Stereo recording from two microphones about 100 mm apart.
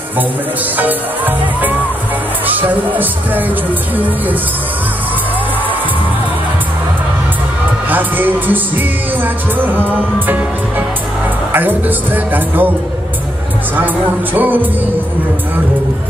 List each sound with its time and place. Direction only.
0.7 s speech: 15° right (ahead or behind)
7.9 s music: 20° right (ahead or behind)
11.5 s music: 20° right (ahead or behind)
14.3 s music: 20° right (ahead or behind)